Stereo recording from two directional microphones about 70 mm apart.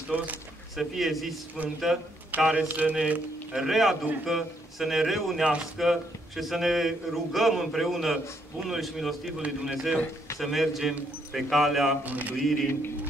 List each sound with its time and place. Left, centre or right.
0.1 s speech: centre
0.7 s a man's voice: centre
1.6 s speech: right
3.5 s a man's voice: centre
12.0 s speech: right